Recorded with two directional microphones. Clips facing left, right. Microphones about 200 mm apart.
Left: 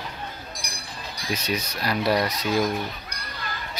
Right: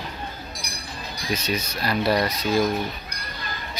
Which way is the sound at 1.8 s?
15° left (ahead or behind).